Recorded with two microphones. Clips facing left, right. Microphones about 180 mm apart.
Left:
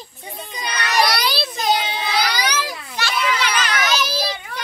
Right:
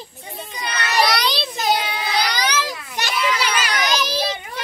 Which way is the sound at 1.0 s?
5° left (ahead or behind).